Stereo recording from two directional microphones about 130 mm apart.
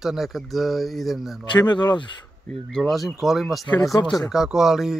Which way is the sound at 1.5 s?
35° left (ahead or behind).